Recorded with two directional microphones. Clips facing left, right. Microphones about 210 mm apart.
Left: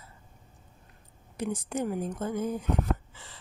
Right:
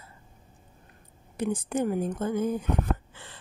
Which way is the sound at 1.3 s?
55° right (ahead or behind).